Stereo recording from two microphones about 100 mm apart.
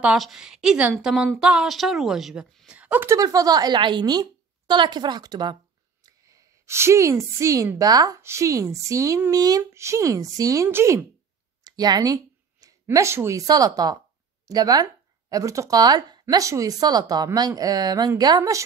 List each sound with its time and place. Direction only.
0.0 s a woman's voice: 5° right (ahead or behind)
3.1 s a woman's voice: 35° right (ahead or behind)
6.0 s a woman's voice: 35° right (ahead or behind)
7.9 s speech: 40° right (ahead or behind)
8.2 s speech: 30° right (ahead or behind)
9.6 s speech: 30° right (ahead or behind)
11.6 s a sound: 40° right (ahead or behind)
12.8 s speech: 25° right (ahead or behind)
13.5 s speech: 40° right (ahead or behind)